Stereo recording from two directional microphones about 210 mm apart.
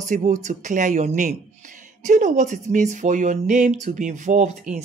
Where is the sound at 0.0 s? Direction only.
35° right (ahead or behind).